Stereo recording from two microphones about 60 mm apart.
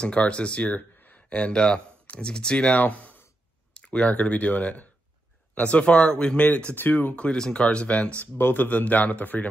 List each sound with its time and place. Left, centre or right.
0.0 s speech: centre
0.7 s a sound: left
1.3 s speech: centre
6.4 s speech: left
7.2 s speech: centre
8.4 s speech: left